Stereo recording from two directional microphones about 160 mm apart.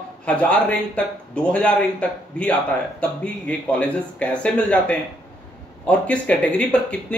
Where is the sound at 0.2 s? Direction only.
10° left (ahead or behind).